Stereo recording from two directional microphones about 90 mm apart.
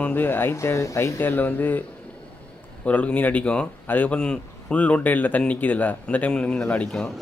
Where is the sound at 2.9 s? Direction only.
15° left (ahead or behind).